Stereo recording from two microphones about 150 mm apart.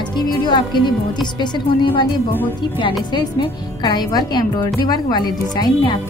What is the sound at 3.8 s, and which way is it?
A woman's voice, 25° left (ahead or behind).